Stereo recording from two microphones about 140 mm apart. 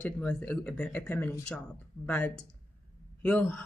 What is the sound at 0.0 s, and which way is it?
Speech, 10° left (ahead or behind).